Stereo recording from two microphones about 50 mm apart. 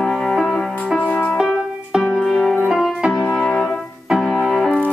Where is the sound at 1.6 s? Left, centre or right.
Centre.